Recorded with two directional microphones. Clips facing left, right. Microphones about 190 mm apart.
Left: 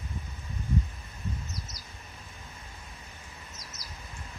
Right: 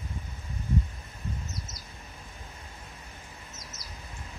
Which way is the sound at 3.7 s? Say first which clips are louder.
Right 1 dB; centre (ahead or behind).